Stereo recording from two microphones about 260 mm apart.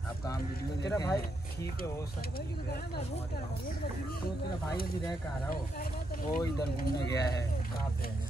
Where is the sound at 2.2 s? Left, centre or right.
Left.